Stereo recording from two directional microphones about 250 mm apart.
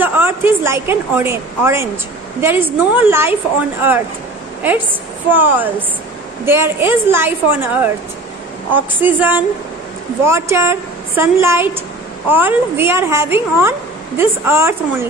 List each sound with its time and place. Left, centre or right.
0.0 s a woman's voice: centre
5.3 s a woman's voice: centre